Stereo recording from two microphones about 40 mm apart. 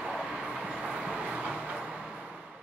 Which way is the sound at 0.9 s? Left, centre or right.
Centre.